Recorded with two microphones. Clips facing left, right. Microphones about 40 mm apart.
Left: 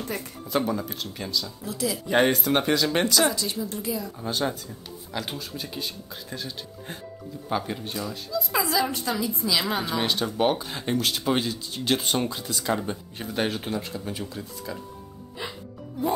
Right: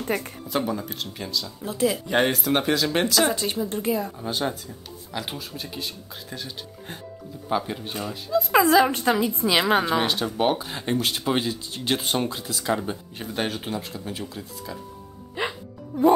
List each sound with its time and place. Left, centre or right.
0.0 s a woman's voice: right
0.5 s speech: centre
1.6 s a woman's voice: right
2.0 s speech: centre
3.6 s a woman's voice: right
4.2 s speech: centre
8.3 s a woman's voice: right
9.8 s speech: centre
15.4 s music: right